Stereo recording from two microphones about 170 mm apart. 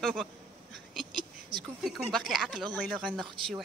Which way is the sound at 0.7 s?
Centre (ahead or behind).